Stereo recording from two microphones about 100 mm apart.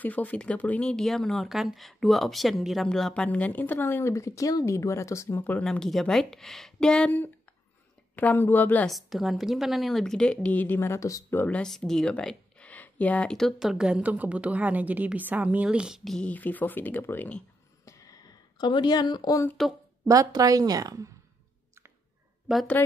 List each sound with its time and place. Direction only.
0.0 s speech: 15° left (ahead or behind)
5.4 s speech: 10° left (ahead or behind)
8.2 s speech: 20° left (ahead or behind)
8.8 s speech: centre (ahead or behind); by 11.3 s 35° left (ahead or behind)
11.3 s speech: 15° left (ahead or behind)
16.3 s speech: 15° left (ahead or behind)
17.8 s a sound: 35° left (ahead or behind)
18.7 s speech: 45° left (ahead or behind)
20.1 s a woman's voice: 35° right (ahead or behind)
22.5 s speech: 5° right (ahead or behind)